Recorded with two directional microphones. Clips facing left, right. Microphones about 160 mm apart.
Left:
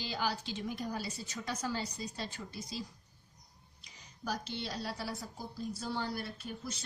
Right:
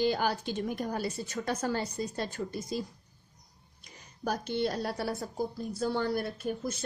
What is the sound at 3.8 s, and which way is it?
A woman's voice, 55° right (ahead or behind).